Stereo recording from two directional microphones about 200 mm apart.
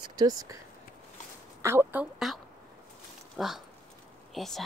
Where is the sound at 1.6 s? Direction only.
10° right (ahead or behind).